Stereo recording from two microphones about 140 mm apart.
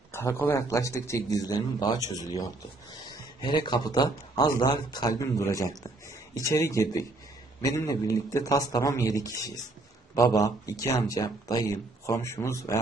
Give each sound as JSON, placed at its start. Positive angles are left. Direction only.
{"t": 0.1, "sound": "speech", "side_deg": 15}